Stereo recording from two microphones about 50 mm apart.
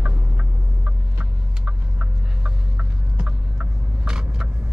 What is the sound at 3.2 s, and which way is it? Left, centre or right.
Vehicle, centre.